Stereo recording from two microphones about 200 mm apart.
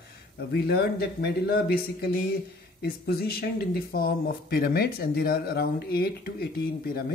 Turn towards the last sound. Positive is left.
turn(degrees=50)  # may be behind; listen again after turning